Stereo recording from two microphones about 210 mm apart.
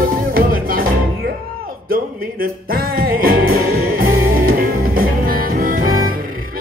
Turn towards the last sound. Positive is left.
turn(degrees=-45)  # may be behind; listen again after turning